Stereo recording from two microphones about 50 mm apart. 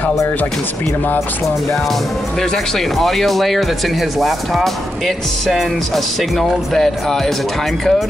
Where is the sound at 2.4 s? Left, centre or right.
Centre.